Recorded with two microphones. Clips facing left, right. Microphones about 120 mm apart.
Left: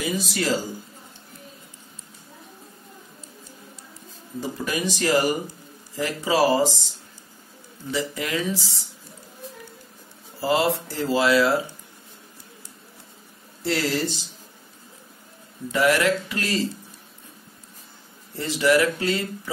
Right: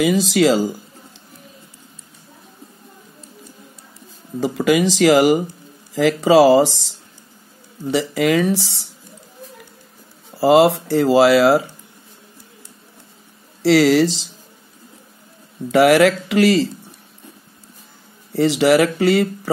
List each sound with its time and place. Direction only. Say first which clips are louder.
0.0 s speech: right 11 dB; 90° right
4.4 s speech: right 11 dB; 90° right
7.9 s speech: right 10 dB; 70° right (ahead or behind)
10.4 s speech: right 10 dB; 70° right (ahead or behind)
13.6 s speech: right 12 dB; 85° right
15.7 s speech: right 8 dB; 70° right (ahead or behind)
18.3 s speech: right 6 dB; 75° right (ahead or behind)